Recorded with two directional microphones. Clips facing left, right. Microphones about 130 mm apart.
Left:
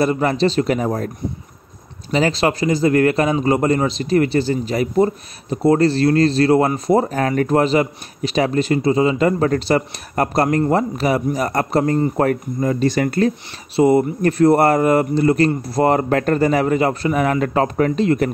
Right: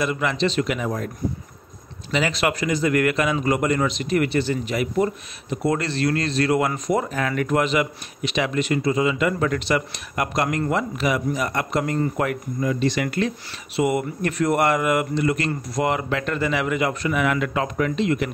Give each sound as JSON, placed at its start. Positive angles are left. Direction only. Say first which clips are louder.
{"t": 0.0, "sound": "a man's voice", "louder": "left 6 dB", "side_deg": 35}